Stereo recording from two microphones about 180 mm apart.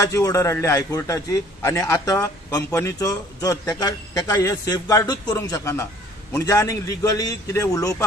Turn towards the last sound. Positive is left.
turn(degrees=15)  # may be behind; listen again after turning